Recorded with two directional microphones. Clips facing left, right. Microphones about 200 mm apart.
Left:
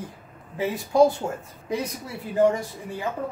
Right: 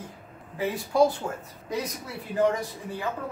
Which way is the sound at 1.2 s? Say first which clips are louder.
Left 3 dB; 25° left (ahead or behind).